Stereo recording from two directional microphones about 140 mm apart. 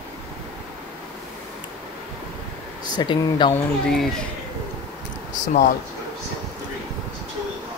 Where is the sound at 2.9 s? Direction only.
35° left (ahead or behind).